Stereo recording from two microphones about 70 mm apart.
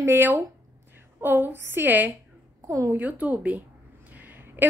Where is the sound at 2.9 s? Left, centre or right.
Right.